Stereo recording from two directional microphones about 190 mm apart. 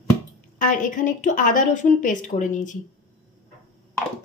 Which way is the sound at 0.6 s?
40° left (ahead or behind).